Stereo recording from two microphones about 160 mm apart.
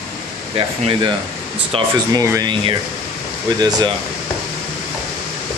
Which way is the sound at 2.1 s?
20° right (ahead or behind).